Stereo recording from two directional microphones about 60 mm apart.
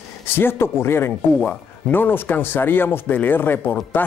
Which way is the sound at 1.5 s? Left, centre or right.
Left.